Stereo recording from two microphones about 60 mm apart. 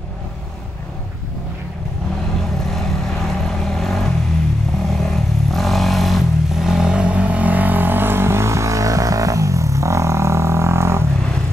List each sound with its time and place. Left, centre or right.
2.6 s vehicle: centre; by 11.1 s right